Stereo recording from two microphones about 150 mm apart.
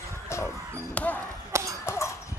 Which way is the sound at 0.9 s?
10° left (ahead or behind).